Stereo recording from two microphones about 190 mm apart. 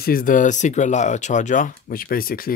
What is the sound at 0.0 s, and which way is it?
Speech, 50° left (ahead or behind).